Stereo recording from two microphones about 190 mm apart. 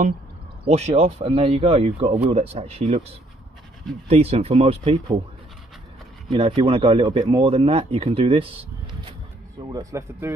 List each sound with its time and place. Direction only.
0.7 s speech: 35° right (ahead or behind)
6.3 s speech: 25° right (ahead or behind)
9.7 s speech: 20° right (ahead or behind)